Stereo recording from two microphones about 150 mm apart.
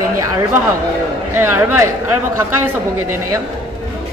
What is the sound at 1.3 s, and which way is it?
Speech, 15° right (ahead or behind).